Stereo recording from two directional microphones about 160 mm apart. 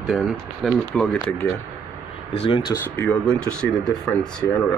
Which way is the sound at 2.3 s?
35° left (ahead or behind).